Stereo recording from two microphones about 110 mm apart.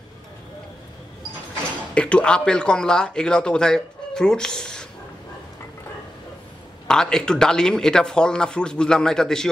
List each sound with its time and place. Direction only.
2.0 s speech: 10° left (ahead or behind)
6.9 s speech: 5° left (ahead or behind)